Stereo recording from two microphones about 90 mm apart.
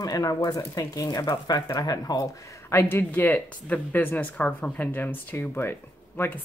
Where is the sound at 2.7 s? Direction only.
25° left (ahead or behind).